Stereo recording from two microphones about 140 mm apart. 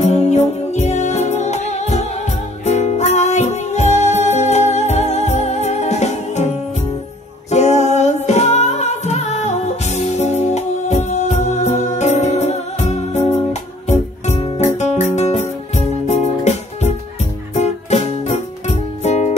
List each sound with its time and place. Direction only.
0.0 s music: 50° left (ahead or behind)
7.5 s music: 55° left (ahead or behind)